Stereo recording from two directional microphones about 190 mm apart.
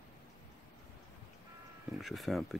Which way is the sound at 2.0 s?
Centre (ahead or behind).